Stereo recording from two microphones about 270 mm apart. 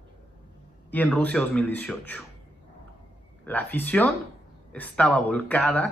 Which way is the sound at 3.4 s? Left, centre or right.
Centre.